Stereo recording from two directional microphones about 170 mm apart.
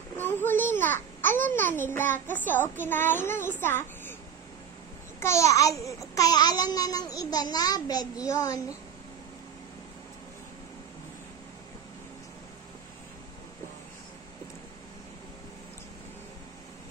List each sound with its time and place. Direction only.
0.2 s babbling: 10° left (ahead or behind)
2.8 s a child's voice: 10° left (ahead or behind)
5.2 s a child's voice: 15° left (ahead or behind)